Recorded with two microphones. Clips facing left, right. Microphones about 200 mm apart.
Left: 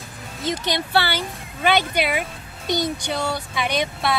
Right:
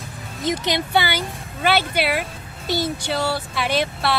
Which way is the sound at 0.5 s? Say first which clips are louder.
Right 2 dB; 20° right (ahead or behind).